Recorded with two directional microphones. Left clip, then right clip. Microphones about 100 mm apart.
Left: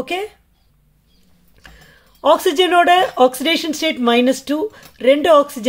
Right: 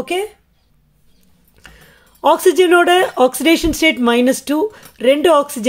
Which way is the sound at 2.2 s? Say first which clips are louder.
Right 2 dB; 30° right (ahead or behind).